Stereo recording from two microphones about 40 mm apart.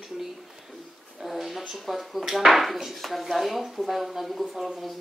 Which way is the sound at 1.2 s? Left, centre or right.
Centre.